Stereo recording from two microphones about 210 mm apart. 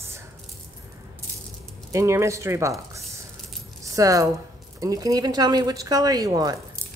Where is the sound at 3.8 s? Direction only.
15° right (ahead or behind).